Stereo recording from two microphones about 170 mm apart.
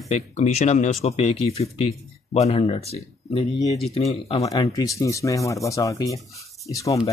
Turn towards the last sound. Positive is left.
turn(degrees=20)  # may be behind; listen again after turning